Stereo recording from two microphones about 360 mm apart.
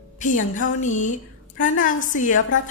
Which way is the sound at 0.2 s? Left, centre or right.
Left.